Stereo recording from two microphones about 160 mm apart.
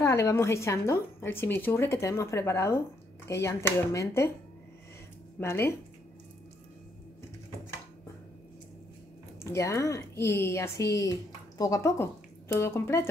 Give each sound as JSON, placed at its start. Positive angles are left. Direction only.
{"t": 0.3, "sound": "a woman's voice", "side_deg": 15}
{"t": 5.4, "sound": "a woman's voice", "side_deg": 15}
{"t": 9.4, "sound": "a woman's voice", "side_deg": 20}